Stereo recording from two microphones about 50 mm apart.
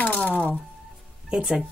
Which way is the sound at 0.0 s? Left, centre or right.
Left.